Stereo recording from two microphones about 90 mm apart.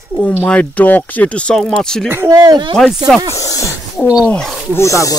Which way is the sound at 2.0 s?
30° right (ahead or behind).